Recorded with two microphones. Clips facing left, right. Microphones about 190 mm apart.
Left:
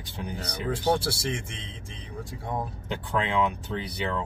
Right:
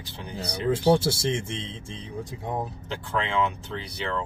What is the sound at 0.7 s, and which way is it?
Speech, 25° right (ahead or behind).